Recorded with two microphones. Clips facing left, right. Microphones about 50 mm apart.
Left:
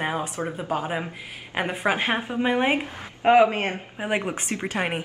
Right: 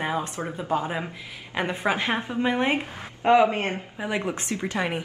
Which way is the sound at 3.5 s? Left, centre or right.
Left.